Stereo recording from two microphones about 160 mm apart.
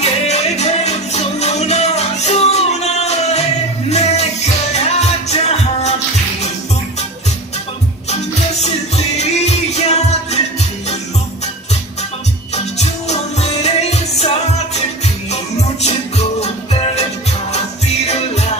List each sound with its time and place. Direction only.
0.0 s music: 45° left (ahead or behind)
8.1 s music: 45° left (ahead or behind)
12.5 s music: 45° left (ahead or behind)